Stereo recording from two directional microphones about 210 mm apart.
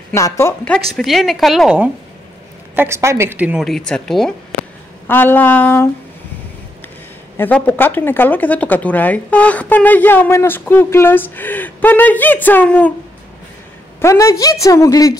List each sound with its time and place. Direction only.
0.1 s speech: 15° left (ahead or behind)
0.9 s a woman's voice: centre (ahead or behind)
7.3 s speech: 10° left (ahead or behind)
14.0 s speech: 15° left (ahead or behind)